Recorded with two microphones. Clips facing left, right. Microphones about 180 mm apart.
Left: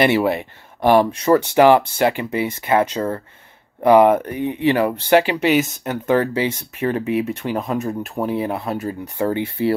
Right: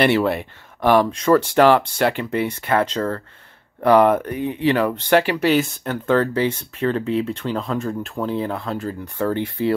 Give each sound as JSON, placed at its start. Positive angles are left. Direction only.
{"t": 0.0, "sound": "speech", "side_deg": 10}